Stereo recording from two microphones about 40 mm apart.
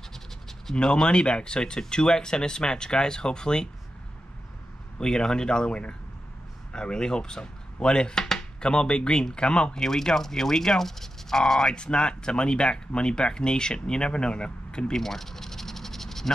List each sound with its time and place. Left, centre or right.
0.7 s speech: centre
4.9 s speech: centre
9.8 s speech: centre
11.7 s speech: left
15.0 s a sound: centre